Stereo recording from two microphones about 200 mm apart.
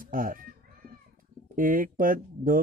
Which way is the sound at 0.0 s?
45° right (ahead or behind).